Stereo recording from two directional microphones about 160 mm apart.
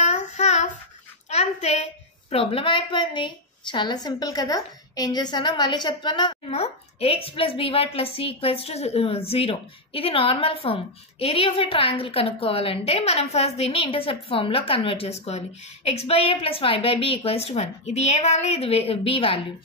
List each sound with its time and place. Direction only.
0.0 s child singing: 45° left (ahead or behind)
1.3 s a woman's voice: 45° left (ahead or behind)
6.6 s a woman's voice: 40° left (ahead or behind)